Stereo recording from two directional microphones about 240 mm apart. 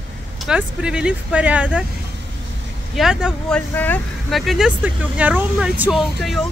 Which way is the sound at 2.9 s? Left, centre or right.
Centre.